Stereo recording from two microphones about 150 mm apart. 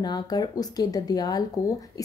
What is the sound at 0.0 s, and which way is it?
Speech, 25° left (ahead or behind).